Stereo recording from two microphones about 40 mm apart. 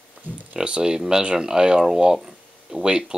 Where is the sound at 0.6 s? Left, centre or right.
Right.